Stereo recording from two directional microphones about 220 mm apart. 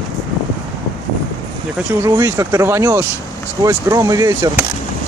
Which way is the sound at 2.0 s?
15° right (ahead or behind).